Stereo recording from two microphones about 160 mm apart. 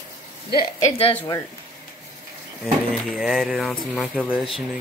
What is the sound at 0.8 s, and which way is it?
Speech, 40° left (ahead or behind).